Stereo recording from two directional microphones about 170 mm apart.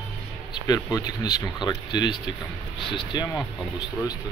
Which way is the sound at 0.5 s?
25° left (ahead or behind).